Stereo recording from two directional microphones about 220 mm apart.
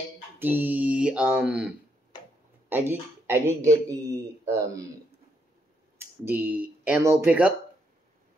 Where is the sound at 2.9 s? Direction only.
10° right (ahead or behind).